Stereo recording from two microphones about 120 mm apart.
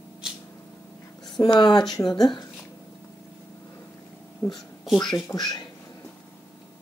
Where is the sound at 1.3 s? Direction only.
40° left (ahead or behind).